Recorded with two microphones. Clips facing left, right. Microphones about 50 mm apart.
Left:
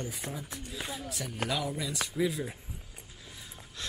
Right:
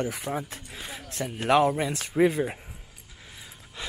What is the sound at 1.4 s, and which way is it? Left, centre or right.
Speech, right.